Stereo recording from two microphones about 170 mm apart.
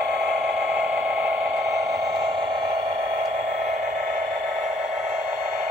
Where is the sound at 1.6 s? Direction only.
20° right (ahead or behind).